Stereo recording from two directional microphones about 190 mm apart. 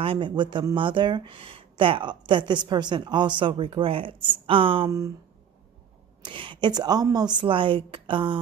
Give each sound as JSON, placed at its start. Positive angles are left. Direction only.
{"t": 0.0, "sound": "speech", "side_deg": -25}
{"t": 6.2, "sound": "speech", "side_deg": -25}